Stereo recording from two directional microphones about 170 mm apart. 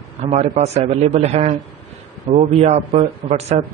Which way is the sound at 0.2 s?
35° right (ahead or behind).